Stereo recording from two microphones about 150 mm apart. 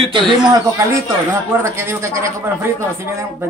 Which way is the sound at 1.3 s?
15° right (ahead or behind).